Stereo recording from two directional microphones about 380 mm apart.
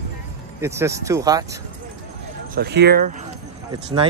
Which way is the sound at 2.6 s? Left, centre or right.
Right.